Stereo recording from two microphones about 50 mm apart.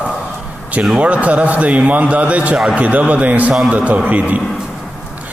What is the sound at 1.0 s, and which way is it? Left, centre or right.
A man's voice, right.